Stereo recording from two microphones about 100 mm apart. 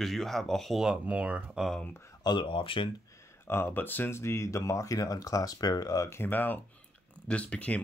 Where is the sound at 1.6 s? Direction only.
5° left (ahead or behind).